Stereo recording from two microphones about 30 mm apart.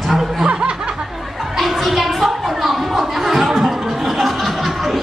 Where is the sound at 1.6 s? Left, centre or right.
Centre.